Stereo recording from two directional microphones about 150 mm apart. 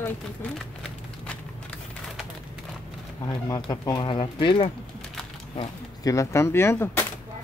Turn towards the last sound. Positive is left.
turn(degrees=15)  # may be behind; listen again after turning